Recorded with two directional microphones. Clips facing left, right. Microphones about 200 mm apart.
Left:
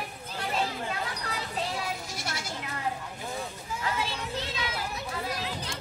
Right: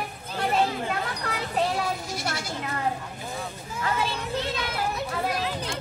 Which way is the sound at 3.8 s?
55° right (ahead or behind).